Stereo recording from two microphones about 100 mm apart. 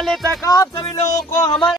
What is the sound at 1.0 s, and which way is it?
Music, 30° left (ahead or behind).